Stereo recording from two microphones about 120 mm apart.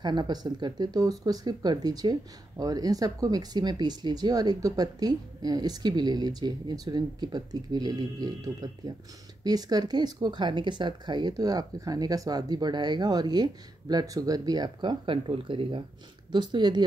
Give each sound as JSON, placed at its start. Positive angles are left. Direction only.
{"t": 0.0, "sound": "speech", "side_deg": -35}